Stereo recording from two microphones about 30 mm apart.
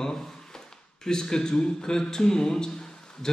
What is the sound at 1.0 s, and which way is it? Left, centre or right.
Speech, left.